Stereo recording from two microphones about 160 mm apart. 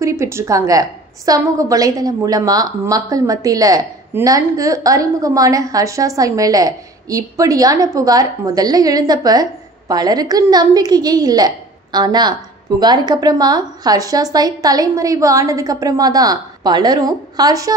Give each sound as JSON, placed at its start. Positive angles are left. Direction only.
{"t": 0.0, "sound": "a woman's voice", "side_deg": -15}